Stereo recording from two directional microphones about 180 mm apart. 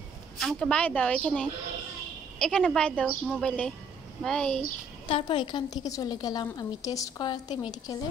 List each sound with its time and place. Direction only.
0.4 s a woman's voice: centre (ahead or behind)
5.0 s a woman's voice: 25° left (ahead or behind)